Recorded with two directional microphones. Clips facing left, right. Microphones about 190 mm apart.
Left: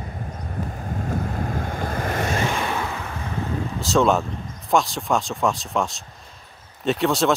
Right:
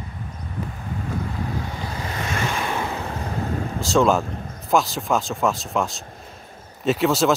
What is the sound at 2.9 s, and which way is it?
Vehicle, 35° right (ahead or behind).